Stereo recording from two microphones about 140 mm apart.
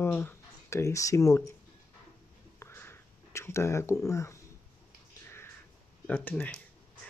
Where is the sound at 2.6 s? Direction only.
15° left (ahead or behind).